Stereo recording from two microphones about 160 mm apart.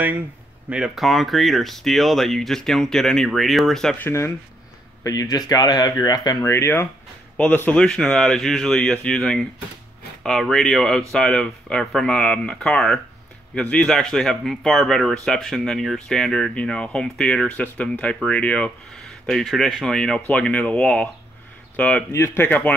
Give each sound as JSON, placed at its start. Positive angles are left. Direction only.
{"t": 0.7, "sound": "speech", "side_deg": -5}
{"t": 5.0, "sound": "speech", "side_deg": 20}